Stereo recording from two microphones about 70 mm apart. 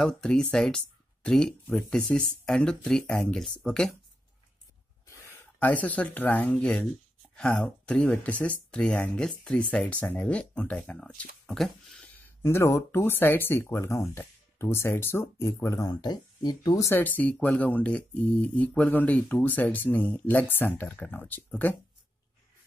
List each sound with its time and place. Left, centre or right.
0.0 s speech: centre
5.6 s speech: left
11.4 s speech: centre
12.2 s speech: left
15.9 s speech: left
16.9 s speech: left